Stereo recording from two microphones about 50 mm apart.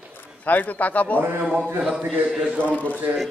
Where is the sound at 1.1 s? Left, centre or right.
Right.